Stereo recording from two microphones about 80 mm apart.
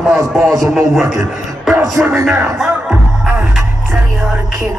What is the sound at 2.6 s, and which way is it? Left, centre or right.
Music, centre.